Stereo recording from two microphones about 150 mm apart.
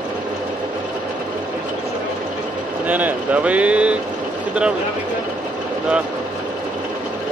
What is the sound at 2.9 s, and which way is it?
Speech, 10° right (ahead or behind).